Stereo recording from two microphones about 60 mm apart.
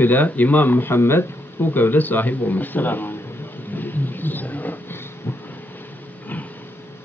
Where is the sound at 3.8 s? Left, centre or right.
Left.